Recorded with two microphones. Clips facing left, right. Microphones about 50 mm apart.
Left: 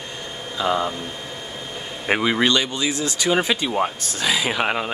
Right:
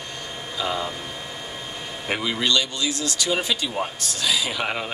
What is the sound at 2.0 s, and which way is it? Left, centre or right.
Speech, left.